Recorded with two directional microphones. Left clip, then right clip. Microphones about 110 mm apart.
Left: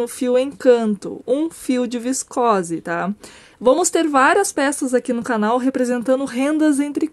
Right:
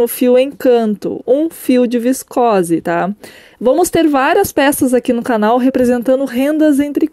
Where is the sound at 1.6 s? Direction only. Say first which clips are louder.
Right 9 dB; 35° right (ahead or behind); by 3.1 s 55° right (ahead or behind).